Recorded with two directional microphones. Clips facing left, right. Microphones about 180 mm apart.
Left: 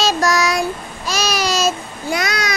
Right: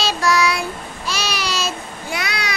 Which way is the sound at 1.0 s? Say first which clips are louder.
Left 5 dB; 45° left (ahead or behind).